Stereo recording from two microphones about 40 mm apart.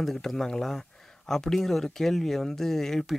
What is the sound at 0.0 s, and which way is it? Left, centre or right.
Speech, centre.